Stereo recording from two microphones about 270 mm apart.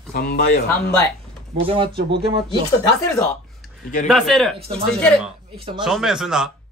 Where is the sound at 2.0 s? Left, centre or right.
Right.